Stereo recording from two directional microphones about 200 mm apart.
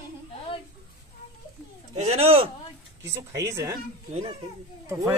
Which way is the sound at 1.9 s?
30° right (ahead or behind).